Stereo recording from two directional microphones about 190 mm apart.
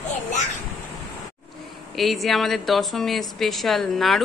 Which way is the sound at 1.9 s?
Centre (ahead or behind).